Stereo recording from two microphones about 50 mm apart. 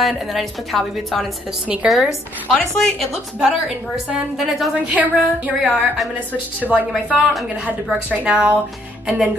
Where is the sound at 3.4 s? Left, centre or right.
Centre.